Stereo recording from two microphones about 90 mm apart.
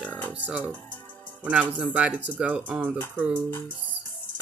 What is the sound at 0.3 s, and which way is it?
Music, 15° right (ahead or behind).